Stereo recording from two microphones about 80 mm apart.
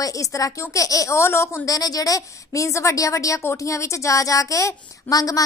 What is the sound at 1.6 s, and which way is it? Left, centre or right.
A woman's voice, left.